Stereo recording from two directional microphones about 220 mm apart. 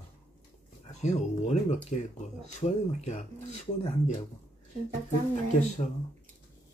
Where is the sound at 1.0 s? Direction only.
30° left (ahead or behind).